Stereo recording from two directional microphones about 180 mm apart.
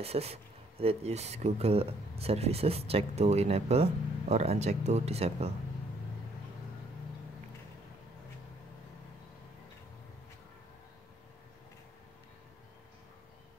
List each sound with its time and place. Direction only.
0.0 s speech: 35° right (ahead or behind)